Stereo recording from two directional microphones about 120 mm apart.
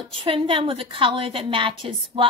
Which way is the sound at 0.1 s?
45° right (ahead or behind).